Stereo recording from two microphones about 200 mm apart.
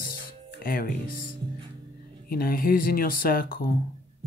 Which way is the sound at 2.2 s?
45° left (ahead or behind).